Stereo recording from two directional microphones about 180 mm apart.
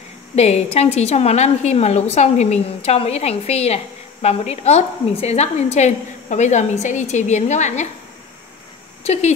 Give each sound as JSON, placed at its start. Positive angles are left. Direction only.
{"t": 0.4, "sound": "a woman's voice", "side_deg": 35}
{"t": 9.0, "sound": "speech", "side_deg": 35}